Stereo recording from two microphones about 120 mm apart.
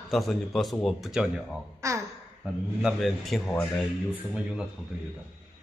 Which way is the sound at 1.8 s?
25° right (ahead or behind).